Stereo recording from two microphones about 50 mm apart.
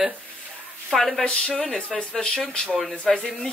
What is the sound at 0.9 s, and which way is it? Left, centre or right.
Speech, centre.